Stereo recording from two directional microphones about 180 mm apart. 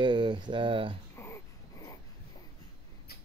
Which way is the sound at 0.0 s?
25° right (ahead or behind).